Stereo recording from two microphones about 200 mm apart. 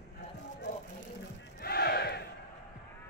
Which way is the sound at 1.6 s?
50° left (ahead or behind).